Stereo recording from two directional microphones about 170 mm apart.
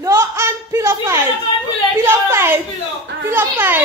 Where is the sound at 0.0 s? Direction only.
15° right (ahead or behind).